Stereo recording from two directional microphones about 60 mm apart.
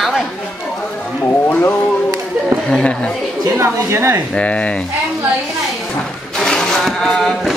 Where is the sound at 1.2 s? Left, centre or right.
Left.